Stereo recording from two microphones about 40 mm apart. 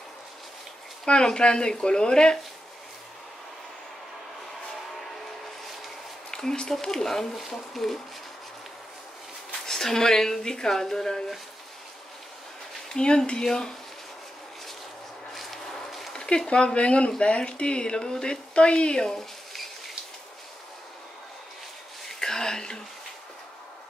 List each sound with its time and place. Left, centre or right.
1.0 s speech: left
6.3 s speech: centre
9.7 s speech: centre
12.9 s speech: left
15.3 s a sound: centre
16.1 s speech: centre
22.0 s a sound: centre